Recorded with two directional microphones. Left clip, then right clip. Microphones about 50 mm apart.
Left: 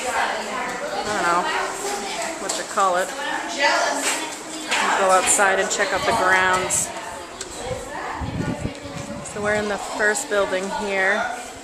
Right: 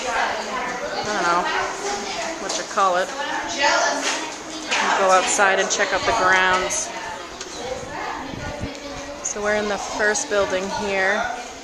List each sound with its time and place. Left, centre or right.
1.0 s chatter: centre
2.5 s a sound: centre
3.6 s speech: centre
4.7 s a sound: centre
5.4 s speech: centre
9.4 s speech: right